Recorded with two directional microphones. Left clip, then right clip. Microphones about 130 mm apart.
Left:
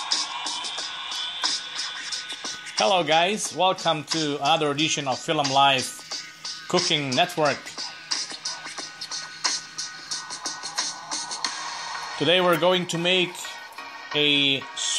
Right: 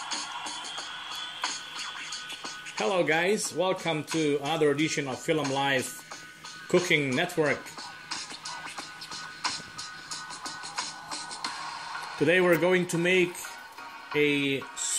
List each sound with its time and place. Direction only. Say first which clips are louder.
0.0 s music: left 7 dB; 25° left (ahead or behind)
2.4 s speech: left 8 dB; 25° left (ahead or behind)
8.1 s music: left 7 dB; 25° left (ahead or behind)
14.1 s speech: left 5 dB; 15° left (ahead or behind)